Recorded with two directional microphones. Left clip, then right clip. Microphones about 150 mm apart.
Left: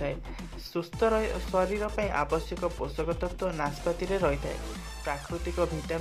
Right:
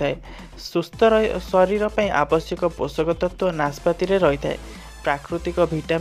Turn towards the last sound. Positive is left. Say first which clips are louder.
# right 10 dB
turn(degrees=-40)  # may be behind; listen again after turning